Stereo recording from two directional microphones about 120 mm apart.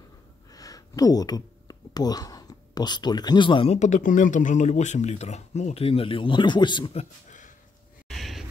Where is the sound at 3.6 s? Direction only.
75° left (ahead or behind); by 6.9 s 40° left (ahead or behind).